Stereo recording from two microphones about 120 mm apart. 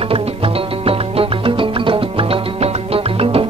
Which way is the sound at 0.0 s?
55° right (ahead or behind).